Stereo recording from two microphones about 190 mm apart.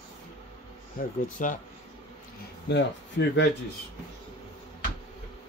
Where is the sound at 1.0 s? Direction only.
45° left (ahead or behind).